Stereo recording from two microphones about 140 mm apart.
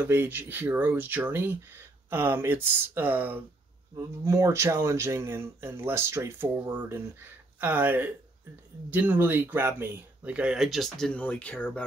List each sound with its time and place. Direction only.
0.0 s speech: 15° right (ahead or behind); by 11.8 s 10° left (ahead or behind)